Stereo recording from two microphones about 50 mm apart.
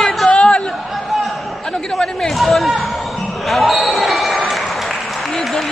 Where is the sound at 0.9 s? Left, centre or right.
Centre.